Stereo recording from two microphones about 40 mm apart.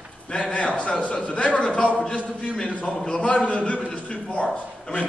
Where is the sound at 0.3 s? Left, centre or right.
Left.